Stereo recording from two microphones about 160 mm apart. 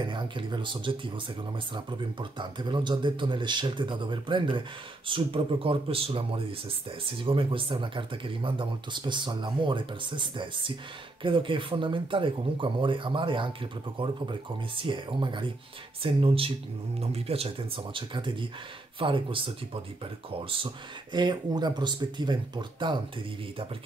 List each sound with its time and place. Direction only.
0.0 s speech: 30° right (ahead or behind)